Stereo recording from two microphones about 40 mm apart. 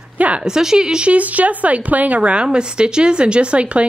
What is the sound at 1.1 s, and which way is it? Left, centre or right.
Speech, right.